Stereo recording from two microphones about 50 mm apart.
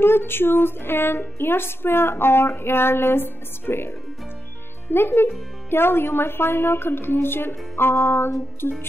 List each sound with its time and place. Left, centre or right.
0.0 s music: left
4.9 s music: left